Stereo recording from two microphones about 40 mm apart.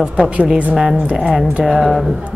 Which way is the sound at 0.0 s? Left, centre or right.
Right.